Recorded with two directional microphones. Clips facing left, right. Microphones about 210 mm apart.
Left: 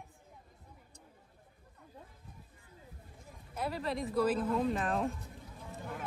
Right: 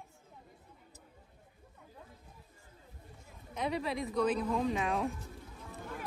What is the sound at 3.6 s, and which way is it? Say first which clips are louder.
Speech: right 1 dB; centre (ahead or behind).